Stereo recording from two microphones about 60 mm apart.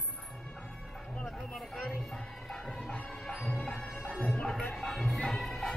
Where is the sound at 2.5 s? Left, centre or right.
Centre.